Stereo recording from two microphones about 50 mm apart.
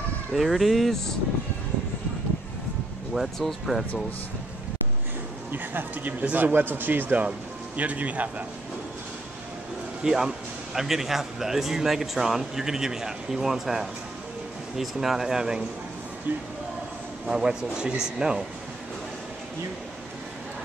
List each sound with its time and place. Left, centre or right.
0.3 s speech: centre
3.2 s speech: centre
5.5 s a man's voice: right
10.0 s a man's voice: centre
16.3 s a man's voice: right
17.3 s a man's voice: centre